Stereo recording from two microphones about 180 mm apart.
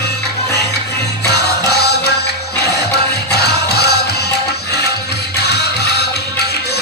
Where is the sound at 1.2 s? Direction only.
65° left (ahead or behind).